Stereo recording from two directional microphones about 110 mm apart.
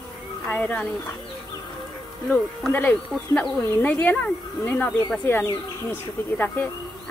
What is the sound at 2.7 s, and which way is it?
Speech, 20° left (ahead or behind).